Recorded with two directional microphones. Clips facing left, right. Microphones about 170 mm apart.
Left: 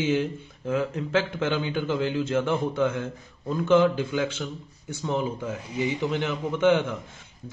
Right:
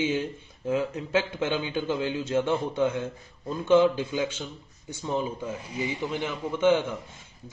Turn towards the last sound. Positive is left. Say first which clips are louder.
# left 1 dB
turn(degrees=-5)  # may be behind; listen again after turning